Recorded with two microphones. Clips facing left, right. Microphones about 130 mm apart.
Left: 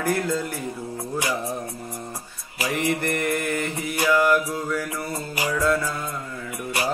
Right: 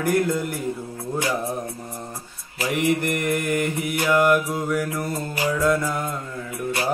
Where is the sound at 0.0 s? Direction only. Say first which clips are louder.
Right 3 dB; 15° right (ahead or behind).